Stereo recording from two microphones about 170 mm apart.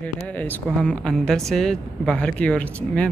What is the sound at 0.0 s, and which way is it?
Speech, 10° left (ahead or behind).